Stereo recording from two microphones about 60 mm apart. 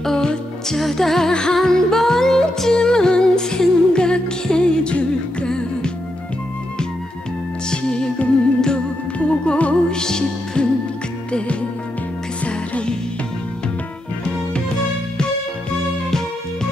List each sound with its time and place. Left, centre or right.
0.0 s music: centre
7.7 s music: centre
12.4 s music: centre